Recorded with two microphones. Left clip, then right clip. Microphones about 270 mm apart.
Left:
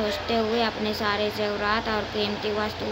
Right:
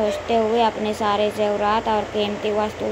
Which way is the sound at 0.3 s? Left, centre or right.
Centre.